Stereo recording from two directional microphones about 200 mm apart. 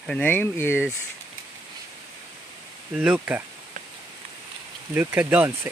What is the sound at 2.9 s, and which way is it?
Speech, 5° right (ahead or behind).